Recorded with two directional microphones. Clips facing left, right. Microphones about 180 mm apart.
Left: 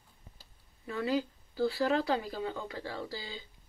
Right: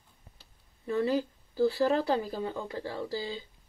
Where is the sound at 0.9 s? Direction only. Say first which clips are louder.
Right 4 dB; 35° right (ahead or behind).